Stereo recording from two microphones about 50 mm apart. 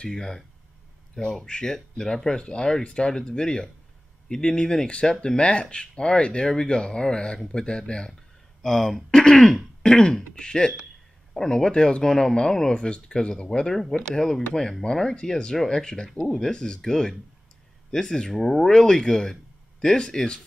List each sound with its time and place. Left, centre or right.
0.0 s speech: centre
8.6 s speech: centre
9.1 s throat clearing: centre
10.3 s speech: centre
16.1 s speech: centre
16.3 s speech: centre